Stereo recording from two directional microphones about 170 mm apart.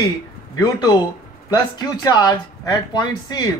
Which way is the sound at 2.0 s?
20° left (ahead or behind).